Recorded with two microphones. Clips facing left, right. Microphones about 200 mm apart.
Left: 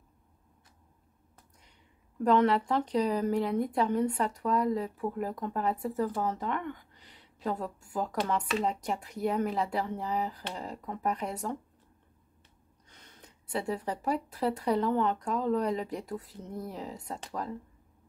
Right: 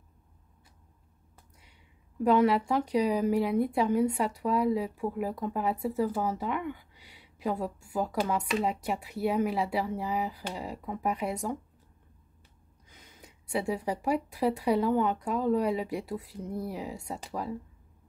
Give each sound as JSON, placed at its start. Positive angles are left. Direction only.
{"t": 1.6, "sound": "speech", "side_deg": -5}
{"t": 12.8, "sound": "speech", "side_deg": -5}